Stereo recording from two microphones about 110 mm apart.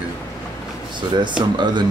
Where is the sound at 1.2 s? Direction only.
45° right (ahead or behind).